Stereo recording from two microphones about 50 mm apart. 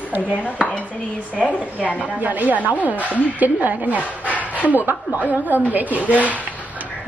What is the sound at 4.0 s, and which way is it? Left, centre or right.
Speech, left.